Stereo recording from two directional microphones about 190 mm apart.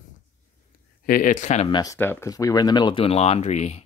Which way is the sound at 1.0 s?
50° left (ahead or behind).